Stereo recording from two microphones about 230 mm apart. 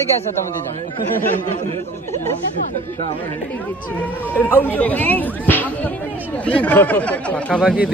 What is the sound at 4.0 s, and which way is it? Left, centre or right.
Speech, centre.